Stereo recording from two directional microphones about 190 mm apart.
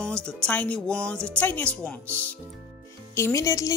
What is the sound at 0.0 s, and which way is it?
Speech, 5° left (ahead or behind).